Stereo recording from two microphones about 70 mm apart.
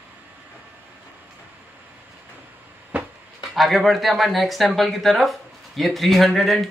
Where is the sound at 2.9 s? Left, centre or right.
Right.